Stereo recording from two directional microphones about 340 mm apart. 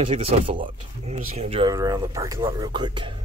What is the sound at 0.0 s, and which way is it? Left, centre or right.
Speech, centre.